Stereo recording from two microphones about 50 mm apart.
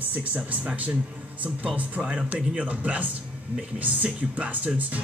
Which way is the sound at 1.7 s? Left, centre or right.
Right.